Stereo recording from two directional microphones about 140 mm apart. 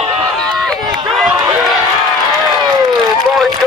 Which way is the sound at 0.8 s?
30° right (ahead or behind).